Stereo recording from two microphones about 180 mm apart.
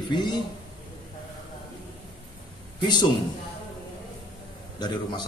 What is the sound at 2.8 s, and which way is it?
Speech, 25° left (ahead or behind).